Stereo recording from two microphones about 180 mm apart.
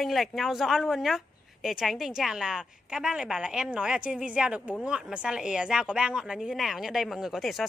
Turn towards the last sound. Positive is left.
turn(degrees=0)  # may be behind; listen again after turning